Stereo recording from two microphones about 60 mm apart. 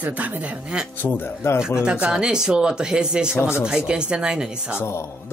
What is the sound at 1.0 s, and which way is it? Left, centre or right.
Speech, left.